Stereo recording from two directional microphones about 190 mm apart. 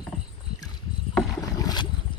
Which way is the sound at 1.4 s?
20° left (ahead or behind).